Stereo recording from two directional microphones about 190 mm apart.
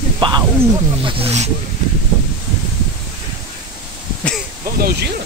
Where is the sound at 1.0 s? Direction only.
30° right (ahead or behind).